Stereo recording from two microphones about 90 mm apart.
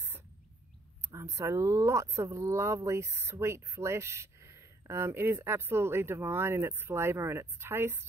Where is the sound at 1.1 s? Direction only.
35° right (ahead or behind).